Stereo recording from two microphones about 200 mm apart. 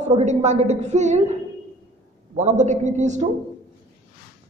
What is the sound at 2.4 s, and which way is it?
Speech, 35° right (ahead or behind).